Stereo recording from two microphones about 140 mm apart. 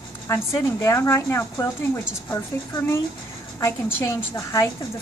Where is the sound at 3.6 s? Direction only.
20° left (ahead or behind).